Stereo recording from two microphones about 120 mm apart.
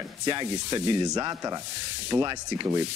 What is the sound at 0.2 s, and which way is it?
Speech, 35° right (ahead or behind).